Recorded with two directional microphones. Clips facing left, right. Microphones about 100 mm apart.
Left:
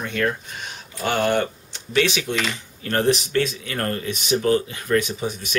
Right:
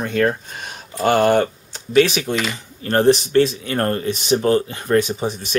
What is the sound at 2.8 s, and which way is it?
Speech, 35° right (ahead or behind).